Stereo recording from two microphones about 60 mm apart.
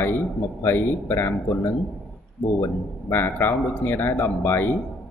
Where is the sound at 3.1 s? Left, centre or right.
Left.